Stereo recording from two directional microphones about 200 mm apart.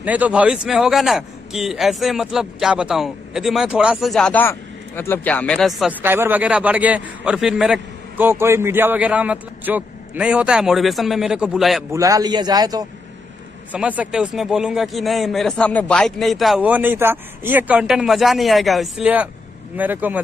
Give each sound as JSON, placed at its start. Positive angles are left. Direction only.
{"t": 0.0, "sound": "a man's voice", "side_deg": -5}
{"t": 6.0, "sound": "a man's voice", "side_deg": -10}
{"t": 11.9, "sound": "a man's voice", "side_deg": -15}
{"t": 13.7, "sound": "a man's voice", "side_deg": -5}